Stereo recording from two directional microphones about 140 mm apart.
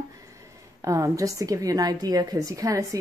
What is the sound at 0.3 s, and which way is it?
A woman's voice, 25° right (ahead or behind).